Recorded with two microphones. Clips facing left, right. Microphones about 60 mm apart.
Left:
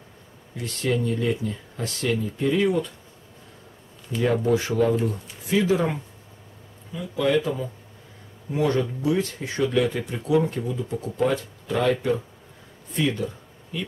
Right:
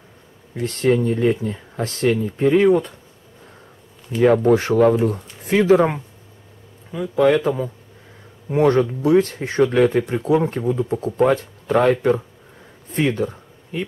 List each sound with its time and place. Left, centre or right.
0.6 s speech: right
4.2 s speech: right
5.1 s speech: right